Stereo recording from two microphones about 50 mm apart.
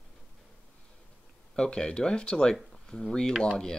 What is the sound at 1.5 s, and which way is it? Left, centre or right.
Speech, centre.